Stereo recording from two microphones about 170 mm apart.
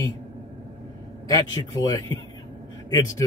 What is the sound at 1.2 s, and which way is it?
Speech, 20° left (ahead or behind).